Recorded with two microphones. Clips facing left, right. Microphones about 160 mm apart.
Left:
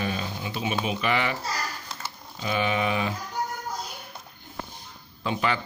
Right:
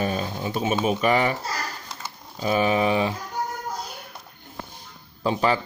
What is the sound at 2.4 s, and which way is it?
Speech, 40° right (ahead or behind).